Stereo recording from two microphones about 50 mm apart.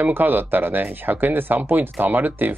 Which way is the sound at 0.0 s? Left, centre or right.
Right.